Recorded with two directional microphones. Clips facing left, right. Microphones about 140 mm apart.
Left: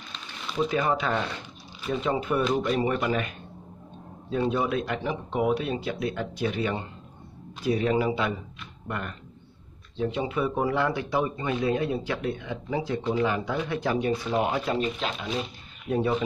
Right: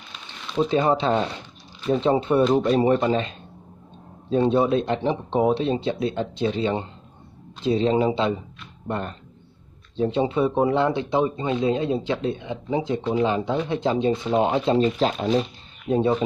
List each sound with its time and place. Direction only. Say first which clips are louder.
0.6 s speech: right 5 dB; 30° right (ahead or behind)
15.0 s speech: right 9 dB; 40° right (ahead or behind)
15.9 s speech: right 5 dB; 25° right (ahead or behind)